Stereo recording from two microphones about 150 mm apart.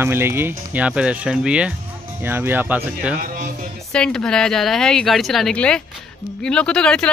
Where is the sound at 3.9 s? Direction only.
5° left (ahead or behind).